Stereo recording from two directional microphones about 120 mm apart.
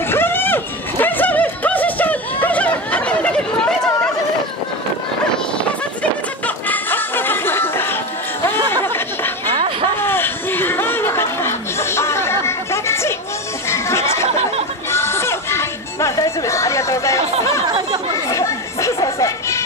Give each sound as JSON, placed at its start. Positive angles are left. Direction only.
{"t": 0.1, "sound": "music", "side_deg": 20}
{"t": 6.4, "sound": "snicker", "side_deg": 15}
{"t": 8.5, "sound": "a sound", "side_deg": 20}
{"t": 9.5, "sound": "vehicle", "side_deg": -40}
{"t": 9.9, "sound": "chatter", "side_deg": 20}
{"t": 13.7, "sound": "music", "side_deg": 20}
{"t": 18.1, "sound": "chatter", "side_deg": 25}